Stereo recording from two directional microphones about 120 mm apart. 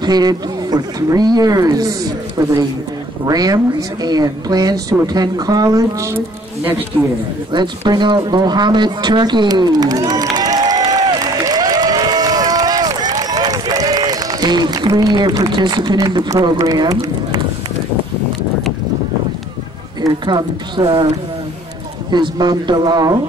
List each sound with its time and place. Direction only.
0.0 s a woman's voice: 35° right (ahead or behind); by 6.8 s 20° right (ahead or behind)
7.5 s a sound: 40° right (ahead or behind)
16.3 s a woman's voice: 30° right (ahead or behind)
20.0 s a woman's voice: 35° right (ahead or behind)
22.1 s a woman's voice: 35° right (ahead or behind)